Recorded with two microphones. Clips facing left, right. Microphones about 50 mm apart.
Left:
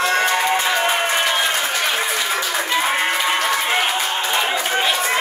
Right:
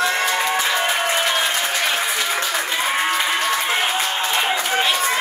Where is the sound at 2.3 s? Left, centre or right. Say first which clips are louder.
Left 1 dB; centre.